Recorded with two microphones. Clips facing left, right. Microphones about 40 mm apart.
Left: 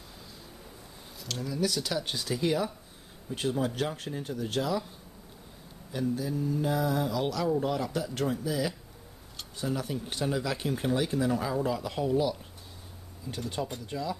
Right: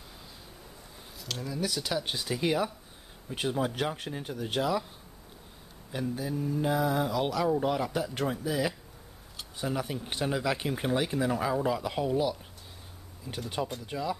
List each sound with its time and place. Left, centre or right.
1.2 s speech: centre
5.9 s speech: centre